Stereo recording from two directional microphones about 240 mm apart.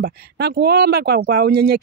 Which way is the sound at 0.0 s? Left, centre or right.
Right.